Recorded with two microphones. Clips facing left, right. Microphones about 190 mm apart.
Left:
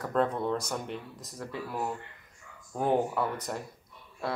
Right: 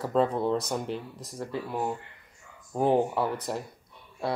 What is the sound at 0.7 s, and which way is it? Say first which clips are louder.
Speech: right 4 dB; 30° right (ahead or behind).